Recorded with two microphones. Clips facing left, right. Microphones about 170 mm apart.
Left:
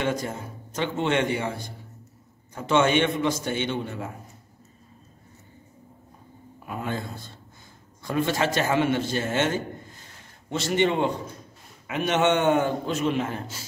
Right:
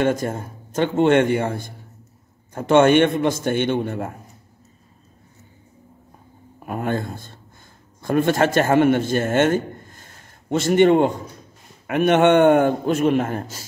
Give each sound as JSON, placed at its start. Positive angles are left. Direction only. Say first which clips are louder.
{"t": 0.0, "sound": "a man's voice", "louder": "right 7 dB", "side_deg": -50}
{"t": 6.6, "sound": "a man's voice", "louder": "right 7 dB", "side_deg": -55}